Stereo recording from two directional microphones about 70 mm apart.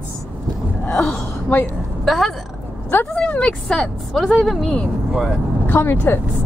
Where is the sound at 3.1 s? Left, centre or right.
Centre.